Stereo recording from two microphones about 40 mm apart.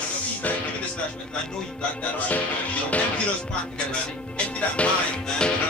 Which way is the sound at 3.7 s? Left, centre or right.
Left.